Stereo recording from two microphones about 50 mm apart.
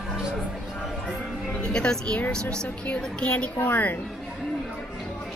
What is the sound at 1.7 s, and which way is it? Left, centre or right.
A woman's voice, centre.